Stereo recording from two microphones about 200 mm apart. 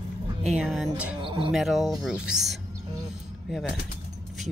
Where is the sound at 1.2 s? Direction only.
25° right (ahead or behind).